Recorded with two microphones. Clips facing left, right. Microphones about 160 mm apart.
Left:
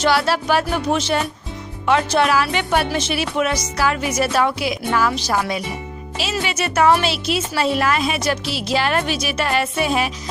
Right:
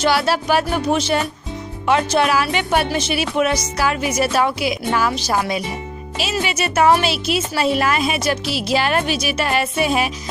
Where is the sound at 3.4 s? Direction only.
15° right (ahead or behind).